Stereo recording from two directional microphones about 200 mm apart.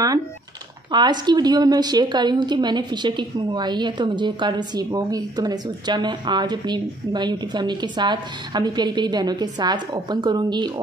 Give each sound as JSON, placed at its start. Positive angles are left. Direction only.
{"t": 0.9, "sound": "a woman's voice", "side_deg": -20}